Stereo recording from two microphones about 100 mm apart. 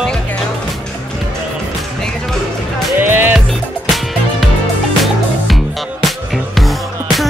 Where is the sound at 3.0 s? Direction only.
20° right (ahead or behind).